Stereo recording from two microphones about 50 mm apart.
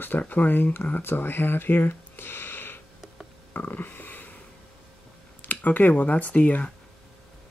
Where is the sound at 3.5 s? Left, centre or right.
Left.